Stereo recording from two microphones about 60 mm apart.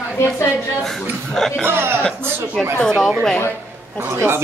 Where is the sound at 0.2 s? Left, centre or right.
Left.